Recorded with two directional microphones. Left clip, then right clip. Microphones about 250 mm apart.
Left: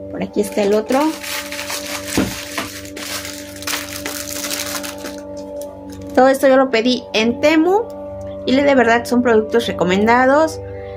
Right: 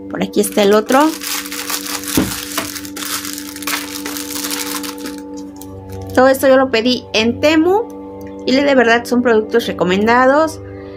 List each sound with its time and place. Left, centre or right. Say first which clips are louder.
0.2 s speech: right 4 dB; centre
6.1 s a woman's voice: right 1 dB; centre